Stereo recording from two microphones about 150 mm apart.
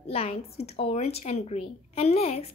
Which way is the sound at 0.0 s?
40° left (ahead or behind).